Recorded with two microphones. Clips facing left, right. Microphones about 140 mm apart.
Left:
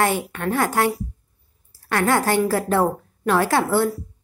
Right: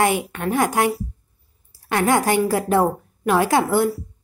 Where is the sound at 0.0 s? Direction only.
15° right (ahead or behind).